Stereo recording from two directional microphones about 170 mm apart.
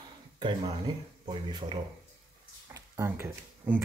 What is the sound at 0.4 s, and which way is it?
Speech, 25° right (ahead or behind).